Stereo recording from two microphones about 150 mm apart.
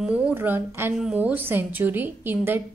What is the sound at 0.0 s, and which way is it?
A woman's voice, 10° right (ahead or behind).